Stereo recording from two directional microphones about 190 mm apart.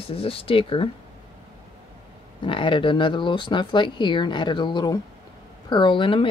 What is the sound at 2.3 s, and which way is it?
Speech, 25° left (ahead or behind).